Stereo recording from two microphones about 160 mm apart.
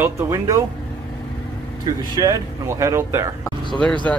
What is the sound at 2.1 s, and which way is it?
Speech, 25° right (ahead or behind).